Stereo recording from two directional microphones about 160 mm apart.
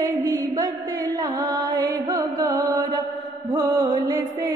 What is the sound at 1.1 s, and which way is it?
Music, 25° right (ahead or behind).